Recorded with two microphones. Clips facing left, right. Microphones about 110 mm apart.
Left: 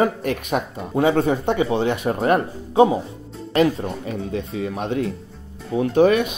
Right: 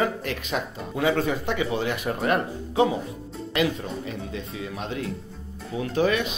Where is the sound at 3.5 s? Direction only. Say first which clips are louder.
Left 7 dB; 40° left (ahead or behind).